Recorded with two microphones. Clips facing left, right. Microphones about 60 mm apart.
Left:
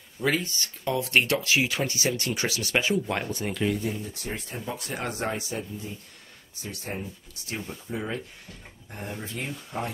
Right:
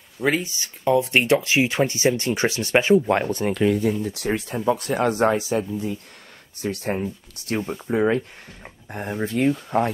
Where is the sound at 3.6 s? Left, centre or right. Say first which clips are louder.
Right 8 dB; right.